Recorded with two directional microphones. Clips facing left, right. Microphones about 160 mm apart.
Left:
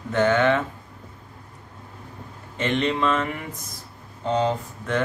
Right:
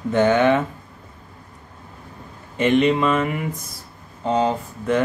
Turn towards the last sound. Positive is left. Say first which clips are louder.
# right 4 dB
turn(degrees=-10)  # may be behind; listen again after turning